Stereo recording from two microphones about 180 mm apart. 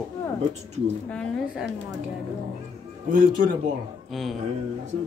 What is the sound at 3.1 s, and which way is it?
Speech, 50° right (ahead or behind).